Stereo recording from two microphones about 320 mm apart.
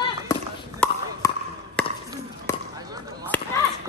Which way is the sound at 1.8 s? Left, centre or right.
Centre.